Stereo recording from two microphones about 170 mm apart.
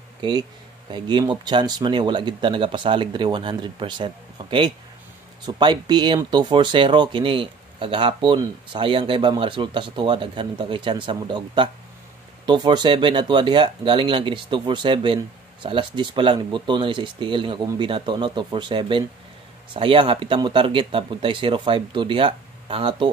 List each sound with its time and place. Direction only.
0.2 s speech: 25° right (ahead or behind)